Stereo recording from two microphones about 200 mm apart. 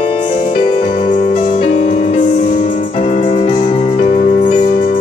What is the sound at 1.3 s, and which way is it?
Music, 35° left (ahead or behind).